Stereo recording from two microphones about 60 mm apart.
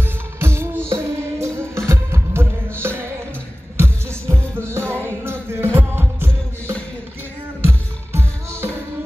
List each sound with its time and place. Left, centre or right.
0.4 s music: right
7.6 s music: right